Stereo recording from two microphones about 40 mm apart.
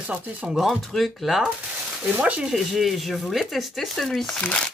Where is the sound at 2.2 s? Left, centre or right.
Right.